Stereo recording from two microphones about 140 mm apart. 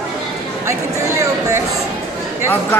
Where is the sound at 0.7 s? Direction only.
20° right (ahead or behind).